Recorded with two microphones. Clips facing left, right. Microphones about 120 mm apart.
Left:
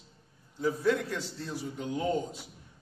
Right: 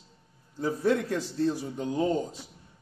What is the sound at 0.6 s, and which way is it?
A man's voice, 40° right (ahead or behind).